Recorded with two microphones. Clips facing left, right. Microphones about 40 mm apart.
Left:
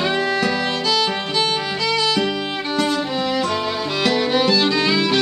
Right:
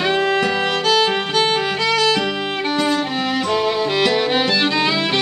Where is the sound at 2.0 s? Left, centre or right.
Centre.